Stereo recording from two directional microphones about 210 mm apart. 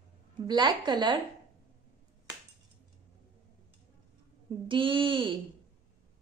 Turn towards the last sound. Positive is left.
turn(degrees=-25)  # may be behind; listen again after turning